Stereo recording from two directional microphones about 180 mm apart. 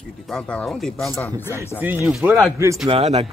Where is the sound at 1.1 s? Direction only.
15° left (ahead or behind).